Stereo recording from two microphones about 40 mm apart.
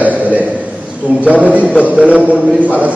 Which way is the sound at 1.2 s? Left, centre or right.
Right.